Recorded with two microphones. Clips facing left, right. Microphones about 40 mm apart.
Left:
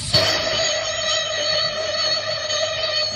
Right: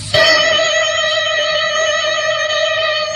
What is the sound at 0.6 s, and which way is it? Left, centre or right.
Music, right.